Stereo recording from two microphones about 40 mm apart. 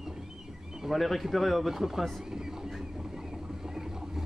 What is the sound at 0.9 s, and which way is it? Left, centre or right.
Speech, centre.